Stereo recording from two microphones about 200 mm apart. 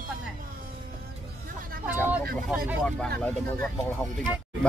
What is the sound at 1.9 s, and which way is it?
Speech, 10° right (ahead or behind).